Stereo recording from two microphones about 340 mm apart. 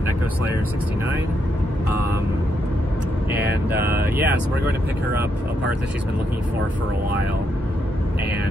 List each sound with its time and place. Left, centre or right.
3.3 s speech: right
4.2 s speech: centre